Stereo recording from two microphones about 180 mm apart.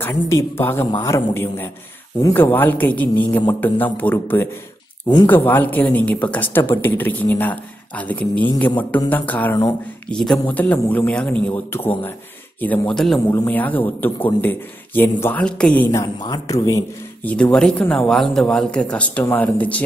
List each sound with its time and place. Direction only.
0.0 s speech: 15° left (ahead or behind)